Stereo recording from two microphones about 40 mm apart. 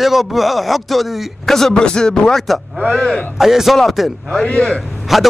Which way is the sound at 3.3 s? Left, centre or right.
Centre.